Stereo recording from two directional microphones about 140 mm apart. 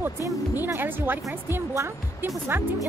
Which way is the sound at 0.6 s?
15° right (ahead or behind).